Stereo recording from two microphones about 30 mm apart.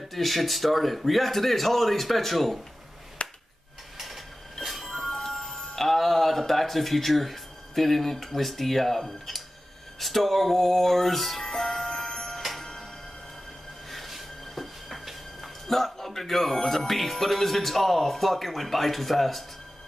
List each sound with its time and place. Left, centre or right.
0.1 s speech: centre
3.2 s finger snapping: left
4.0 s a sound: centre
4.8 s music: centre
5.8 s speech: centre
9.9 s music: centre
12.1 s clock: left
13.8 s a sound: centre
15.6 s speech: centre